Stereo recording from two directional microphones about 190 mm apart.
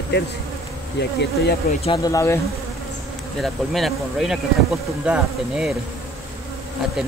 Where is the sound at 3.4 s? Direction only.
Centre (ahead or behind).